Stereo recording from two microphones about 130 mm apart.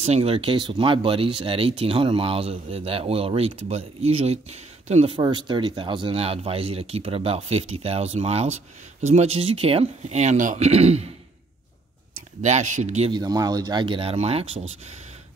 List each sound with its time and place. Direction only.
0.0 s speech: 50° right (ahead or behind)
5.1 s speech: 35° right (ahead or behind); by 11.1 s 55° right (ahead or behind)
12.4 s speech: 65° right (ahead or behind)
13.1 s speech: 30° right (ahead or behind); by 14.7 s 55° right (ahead or behind)